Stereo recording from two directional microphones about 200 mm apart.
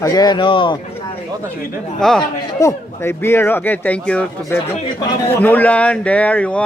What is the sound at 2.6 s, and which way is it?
Speech, 15° left (ahead or behind).